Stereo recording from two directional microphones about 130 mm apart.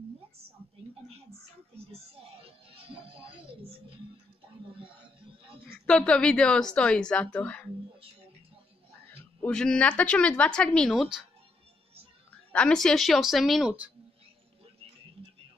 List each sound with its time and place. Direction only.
2.4 s music: 45° right (ahead or behind)
5.7 s speech: 10° left (ahead or behind)
9.4 s speech: 5° left (ahead or behind)
12.5 s speech: 5° left (ahead or behind); by 13.9 s 10° right (ahead or behind)